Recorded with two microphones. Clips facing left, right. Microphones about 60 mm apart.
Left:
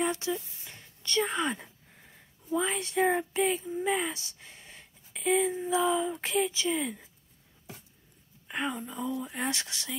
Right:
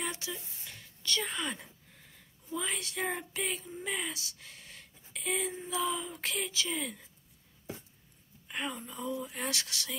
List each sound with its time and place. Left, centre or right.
0.0 s speech: left
0.3 s a sound: centre
3.0 s speech: centre
3.3 s child singing: centre
3.9 s a sound: left
5.2 s speech: centre
6.4 s child singing: left
6.7 s speech: centre
8.5 s speech: centre